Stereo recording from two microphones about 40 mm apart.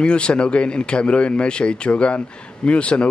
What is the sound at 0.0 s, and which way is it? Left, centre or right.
Speech, left.